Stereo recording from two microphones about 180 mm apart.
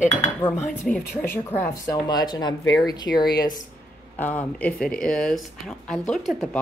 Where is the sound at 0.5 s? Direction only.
10° left (ahead or behind).